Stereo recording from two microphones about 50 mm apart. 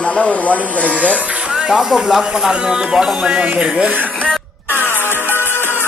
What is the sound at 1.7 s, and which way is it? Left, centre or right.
Speech, centre.